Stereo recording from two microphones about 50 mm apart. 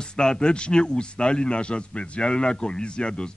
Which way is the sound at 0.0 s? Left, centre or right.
Centre.